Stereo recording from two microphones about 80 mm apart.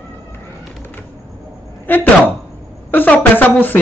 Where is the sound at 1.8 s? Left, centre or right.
Left.